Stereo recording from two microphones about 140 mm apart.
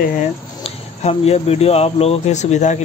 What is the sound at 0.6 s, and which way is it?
Speech, 50° left (ahead or behind).